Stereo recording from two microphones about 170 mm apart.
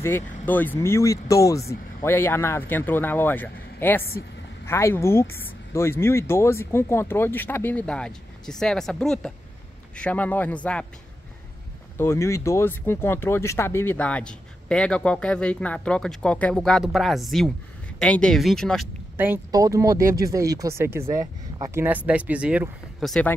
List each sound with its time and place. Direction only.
0.0 s speech: 10° left (ahead or behind)
12.0 s speech: 15° left (ahead or behind)
19.1 s speech: 10° right (ahead or behind)